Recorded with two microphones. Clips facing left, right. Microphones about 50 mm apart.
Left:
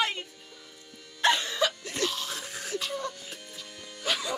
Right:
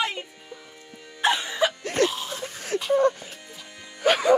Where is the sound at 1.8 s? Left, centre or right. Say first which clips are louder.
Right 9 dB; right.